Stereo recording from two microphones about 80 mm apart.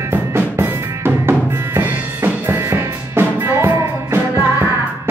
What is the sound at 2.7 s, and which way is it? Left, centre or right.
Music, right.